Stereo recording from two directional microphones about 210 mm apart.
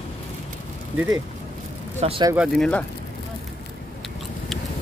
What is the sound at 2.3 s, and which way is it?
Speech, centre (ahead or behind).